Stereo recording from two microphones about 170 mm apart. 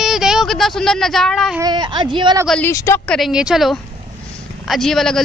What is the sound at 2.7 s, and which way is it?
Speech, 15° left (ahead or behind).